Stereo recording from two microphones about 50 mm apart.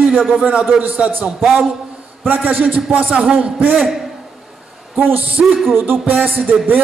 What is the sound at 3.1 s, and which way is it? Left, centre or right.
Speech, right.